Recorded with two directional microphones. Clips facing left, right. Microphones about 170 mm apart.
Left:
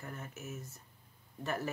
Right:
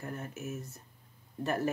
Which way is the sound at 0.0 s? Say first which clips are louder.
Right 5 dB; 40° right (ahead or behind).